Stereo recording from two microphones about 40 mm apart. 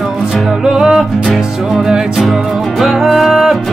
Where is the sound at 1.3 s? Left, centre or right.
Centre.